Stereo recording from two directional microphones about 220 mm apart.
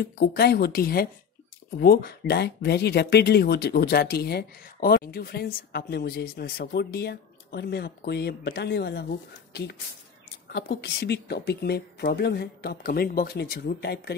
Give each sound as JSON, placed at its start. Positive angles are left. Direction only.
{"t": 0.0, "sound": "speech", "side_deg": 45}